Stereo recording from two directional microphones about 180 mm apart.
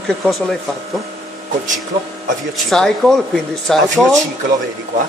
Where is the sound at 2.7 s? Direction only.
Centre (ahead or behind).